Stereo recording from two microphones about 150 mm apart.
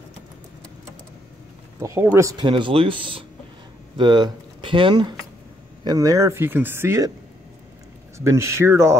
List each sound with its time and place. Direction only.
1.8 s speech: 15° right (ahead or behind)
2.4 s speech: 35° right (ahead or behind)
5.9 s speech: 25° right (ahead or behind)
8.2 s speech: 20° right (ahead or behind)